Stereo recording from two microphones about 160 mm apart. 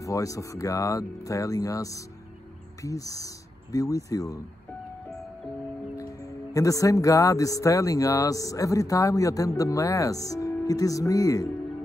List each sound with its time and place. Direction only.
0.0 s speech: 20° left (ahead or behind)
5.9 s speech: 20° left (ahead or behind)